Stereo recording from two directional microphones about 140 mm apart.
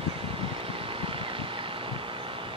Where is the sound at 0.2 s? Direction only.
40° right (ahead or behind).